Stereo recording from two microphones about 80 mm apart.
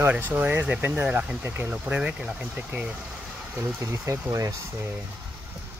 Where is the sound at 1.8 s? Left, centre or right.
Centre.